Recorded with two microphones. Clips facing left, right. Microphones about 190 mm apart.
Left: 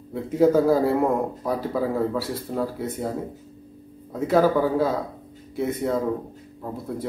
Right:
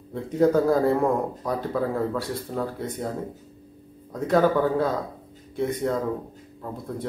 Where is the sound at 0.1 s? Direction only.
5° left (ahead or behind).